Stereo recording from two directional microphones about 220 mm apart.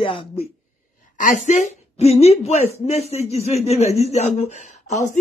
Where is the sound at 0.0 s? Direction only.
25° left (ahead or behind).